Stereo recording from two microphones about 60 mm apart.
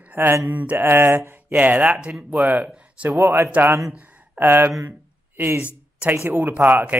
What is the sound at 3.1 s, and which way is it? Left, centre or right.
Speech, right.